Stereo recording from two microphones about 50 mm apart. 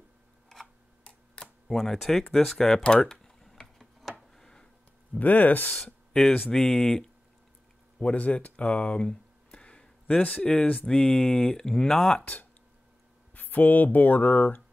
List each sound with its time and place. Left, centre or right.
1.0 s a sound: centre
1.7 s speech: centre
2.8 s tick-tock: centre
4.4 s a sound: centre
5.2 s speech: left
6.5 s speech: centre
8.0 s speech: left; by 12.3 s centre
13.3 s a sound: left
13.9 s speech: left